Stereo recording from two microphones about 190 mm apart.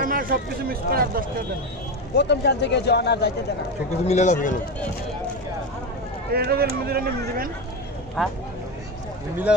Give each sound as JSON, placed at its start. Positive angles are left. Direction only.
{"t": 0.0, "sound": "speech", "side_deg": -50}
{"t": 2.1, "sound": "speech", "side_deg": 60}
{"t": 4.0, "sound": "a man's voice", "side_deg": 35}
{"t": 6.3, "sound": "speech", "side_deg": -55}
{"t": 8.2, "sound": "speech", "side_deg": 0}